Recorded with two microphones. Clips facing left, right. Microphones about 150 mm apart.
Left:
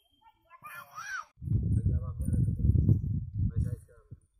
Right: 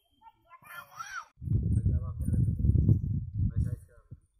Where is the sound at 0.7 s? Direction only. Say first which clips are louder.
Left 1 dB; 55° right (ahead or behind).